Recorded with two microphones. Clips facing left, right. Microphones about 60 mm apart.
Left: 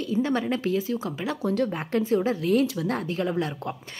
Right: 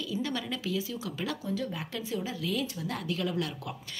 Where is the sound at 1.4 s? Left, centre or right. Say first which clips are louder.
Left 8 dB; left.